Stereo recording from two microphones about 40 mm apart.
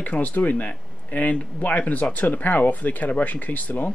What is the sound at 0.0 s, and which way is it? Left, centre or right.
Speech, left.